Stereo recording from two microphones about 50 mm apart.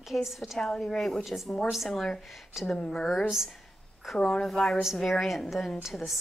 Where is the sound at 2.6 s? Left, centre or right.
Left.